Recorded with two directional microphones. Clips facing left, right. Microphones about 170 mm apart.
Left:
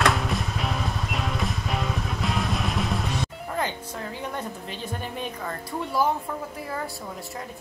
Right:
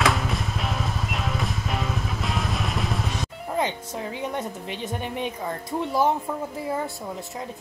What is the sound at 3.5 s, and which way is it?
Music, 20° right (ahead or behind).